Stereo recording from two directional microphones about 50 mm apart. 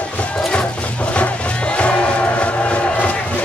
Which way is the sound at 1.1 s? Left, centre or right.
Left.